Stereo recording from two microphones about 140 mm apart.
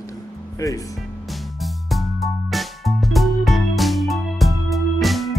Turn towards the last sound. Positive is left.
turn(degrees=0)  # may be behind; listen again after turning